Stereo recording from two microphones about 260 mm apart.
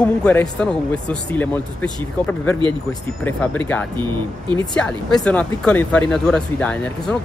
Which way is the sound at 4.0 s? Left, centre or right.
Centre.